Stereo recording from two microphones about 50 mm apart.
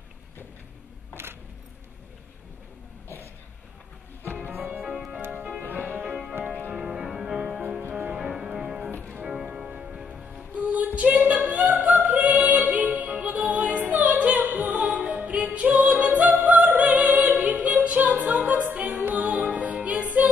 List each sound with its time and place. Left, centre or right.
4.2 s music: left
4.5 s music: right
6.7 s music: centre; by 10.9 s right
11.0 s female singing: right
11.7 s music: right